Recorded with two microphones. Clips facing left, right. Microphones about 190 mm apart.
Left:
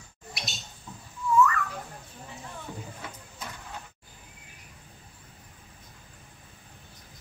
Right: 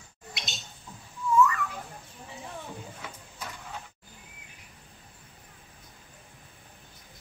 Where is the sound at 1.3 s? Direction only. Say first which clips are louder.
Even; 15° right (ahead or behind).